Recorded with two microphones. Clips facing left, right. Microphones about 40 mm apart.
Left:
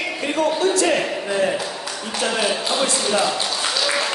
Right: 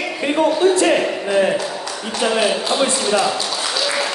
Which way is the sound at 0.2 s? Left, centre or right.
Right.